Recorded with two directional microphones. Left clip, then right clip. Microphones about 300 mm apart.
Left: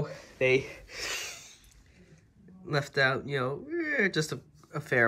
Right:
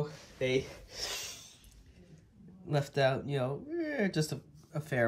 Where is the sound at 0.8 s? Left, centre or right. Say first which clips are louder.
Left 4 dB; centre.